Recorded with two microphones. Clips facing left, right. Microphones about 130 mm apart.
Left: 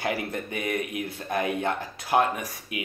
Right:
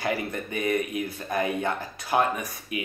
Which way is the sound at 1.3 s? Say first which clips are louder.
Even; 20° left (ahead or behind).